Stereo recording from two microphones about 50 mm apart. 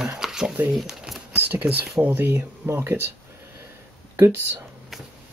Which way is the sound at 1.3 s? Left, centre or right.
Right.